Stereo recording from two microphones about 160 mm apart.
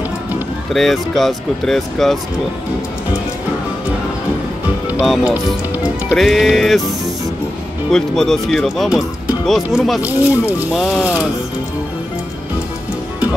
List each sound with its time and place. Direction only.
0.7 s speech: centre (ahead or behind)
5.0 s speech: centre (ahead or behind)
7.9 s speech: centre (ahead or behind)